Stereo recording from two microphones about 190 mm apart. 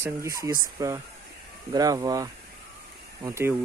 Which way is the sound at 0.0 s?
15° right (ahead or behind).